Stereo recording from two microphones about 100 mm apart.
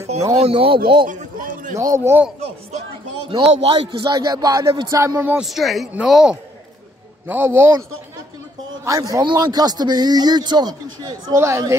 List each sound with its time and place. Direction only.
0.4 s speech: 65° right (ahead or behind)
1.8 s a man's voice: 35° right (ahead or behind)
3.3 s speech: 65° right (ahead or behind)
3.7 s a man's voice: 45° right (ahead or behind); by 5.4 s 25° right (ahead or behind)
5.4 s speech: centre (ahead or behind)
7.2 s speech: 20° right (ahead or behind)
8.8 s a man's voice: 35° right (ahead or behind)